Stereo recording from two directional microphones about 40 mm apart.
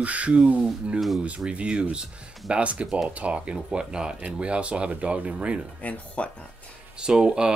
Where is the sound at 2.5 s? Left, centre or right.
Right.